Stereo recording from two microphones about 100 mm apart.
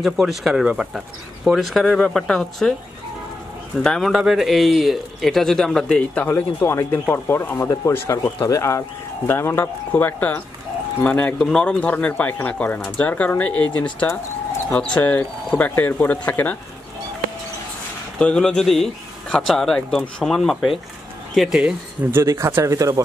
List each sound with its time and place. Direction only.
0.0 s speech: centre (ahead or behind)
3.7 s a man's voice: 5° left (ahead or behind)
18.2 s speech: 10° left (ahead or behind)
22.1 s speech: 30° right (ahead or behind)